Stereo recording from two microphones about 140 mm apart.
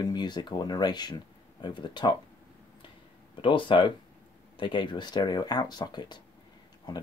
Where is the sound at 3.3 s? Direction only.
35° left (ahead or behind).